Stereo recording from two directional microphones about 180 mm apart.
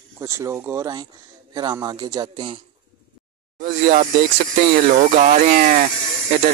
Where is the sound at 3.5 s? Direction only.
45° right (ahead or behind).